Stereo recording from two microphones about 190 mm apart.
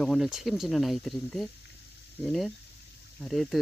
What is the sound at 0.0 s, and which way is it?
Speech, centre (ahead or behind).